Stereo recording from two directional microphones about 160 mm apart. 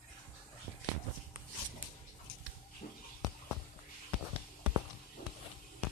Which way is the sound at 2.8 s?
60° left (ahead or behind).